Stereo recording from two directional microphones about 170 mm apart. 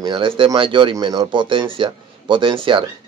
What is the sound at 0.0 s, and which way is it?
Speech, 30° right (ahead or behind).